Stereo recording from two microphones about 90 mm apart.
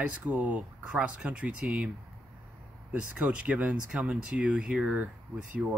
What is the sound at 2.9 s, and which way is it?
Speech, 15° right (ahead or behind).